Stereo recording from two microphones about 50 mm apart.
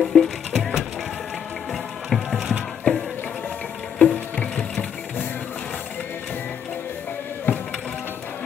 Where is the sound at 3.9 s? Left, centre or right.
Left.